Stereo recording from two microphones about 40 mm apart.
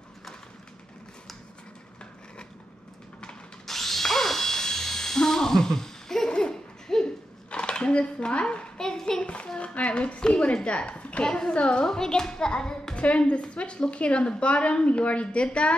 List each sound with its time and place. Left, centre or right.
3.6 s drill: centre
7.5 s dishes: left
8.7 s hands: centre
9.2 s a woman's voice: left